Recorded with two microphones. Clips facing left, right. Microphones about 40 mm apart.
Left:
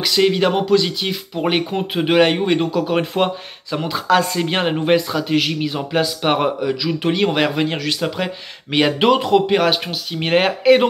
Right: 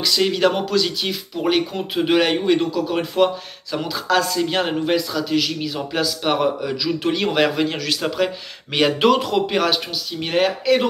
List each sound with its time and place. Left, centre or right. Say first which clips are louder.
0.2 s speech: left 4 dB; centre
2.7 s speech: left 3 dB; left
6.6 s speech: left 2 dB; centre